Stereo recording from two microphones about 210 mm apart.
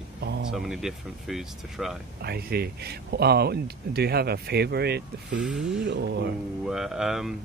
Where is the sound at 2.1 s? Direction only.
50° right (ahead or behind).